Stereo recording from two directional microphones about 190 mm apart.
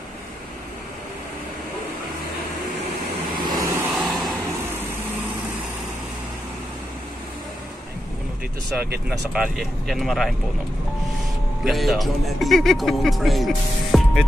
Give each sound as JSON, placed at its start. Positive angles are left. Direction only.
{"t": 3.4, "sound": "vehicle", "side_deg": -20}
{"t": 3.9, "sound": "vehicle", "side_deg": 0}
{"t": 9.3, "sound": "speech", "side_deg": 0}
{"t": 11.6, "sound": "speech", "side_deg": 0}